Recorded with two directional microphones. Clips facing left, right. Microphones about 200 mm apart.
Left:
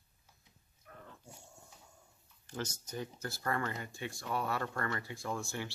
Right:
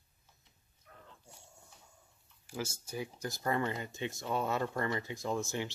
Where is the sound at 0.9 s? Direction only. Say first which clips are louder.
Left 4 dB; 50° left (ahead or behind).